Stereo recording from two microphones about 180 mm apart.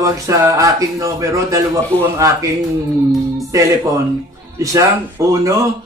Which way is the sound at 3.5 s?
20° right (ahead or behind).